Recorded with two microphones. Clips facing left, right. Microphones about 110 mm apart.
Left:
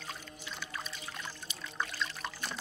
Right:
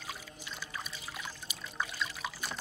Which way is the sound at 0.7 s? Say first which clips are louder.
Even; 5° right (ahead or behind).